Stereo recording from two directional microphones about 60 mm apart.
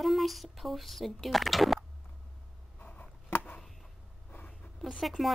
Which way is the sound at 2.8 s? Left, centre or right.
Left.